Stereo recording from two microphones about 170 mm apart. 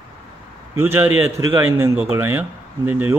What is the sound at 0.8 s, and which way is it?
Speech, 10° right (ahead or behind).